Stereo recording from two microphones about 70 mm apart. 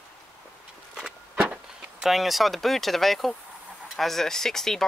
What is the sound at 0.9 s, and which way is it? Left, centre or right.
Vehicle, centre.